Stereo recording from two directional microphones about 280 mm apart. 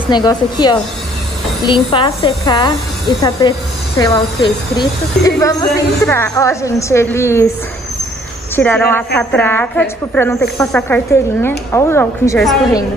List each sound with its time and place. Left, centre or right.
0.1 s a woman's voice: centre
8.5 s a woman's voice: centre